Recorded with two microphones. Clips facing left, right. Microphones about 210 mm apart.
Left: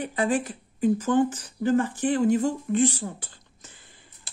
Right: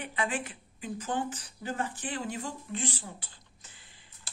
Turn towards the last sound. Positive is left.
turn(degrees=45)  # may be behind; listen again after turning